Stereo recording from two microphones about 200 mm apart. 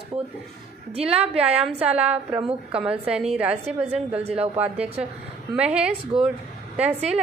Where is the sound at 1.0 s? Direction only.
5° right (ahead or behind).